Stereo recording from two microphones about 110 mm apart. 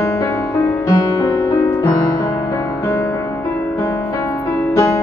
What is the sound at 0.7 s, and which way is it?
Music, 35° left (ahead or behind).